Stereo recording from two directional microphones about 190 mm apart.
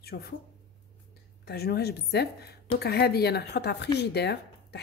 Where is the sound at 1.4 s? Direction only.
55° left (ahead or behind).